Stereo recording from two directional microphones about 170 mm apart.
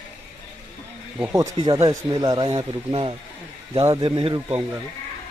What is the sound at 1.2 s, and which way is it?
Speech, 20° right (ahead or behind).